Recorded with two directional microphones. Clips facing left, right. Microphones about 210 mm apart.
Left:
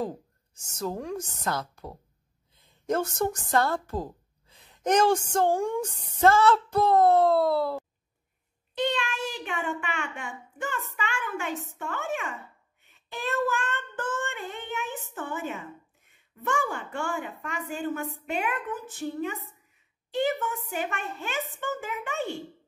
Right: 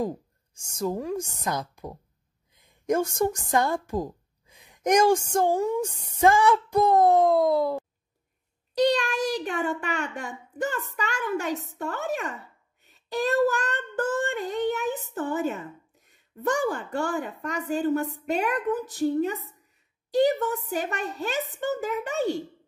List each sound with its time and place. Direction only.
0.6 s a woman's voice: 10° right (ahead or behind)
8.7 s a child's voice: 40° right (ahead or behind)